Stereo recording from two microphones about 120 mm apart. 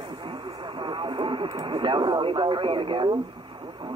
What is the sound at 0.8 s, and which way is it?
Radio, 45° right (ahead or behind).